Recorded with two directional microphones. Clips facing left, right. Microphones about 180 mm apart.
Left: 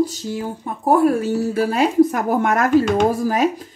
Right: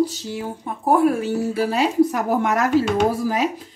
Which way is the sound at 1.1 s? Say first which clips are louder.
Left 2 dB; 40° left (ahead or behind).